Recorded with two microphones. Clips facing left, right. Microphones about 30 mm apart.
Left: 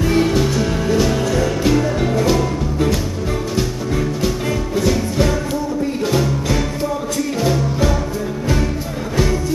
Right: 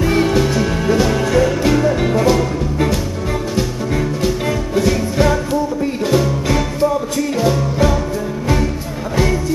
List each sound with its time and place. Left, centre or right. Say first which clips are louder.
0.0 s music: right 1 dB; centre
1.6 s music: right 2 dB; centre
9.1 s music: right 2 dB; centre